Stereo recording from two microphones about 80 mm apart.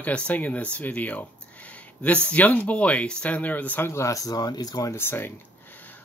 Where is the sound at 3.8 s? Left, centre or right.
Left.